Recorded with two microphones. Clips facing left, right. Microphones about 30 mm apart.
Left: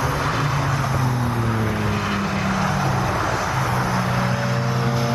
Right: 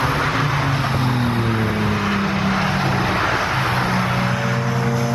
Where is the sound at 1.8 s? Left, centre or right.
Centre.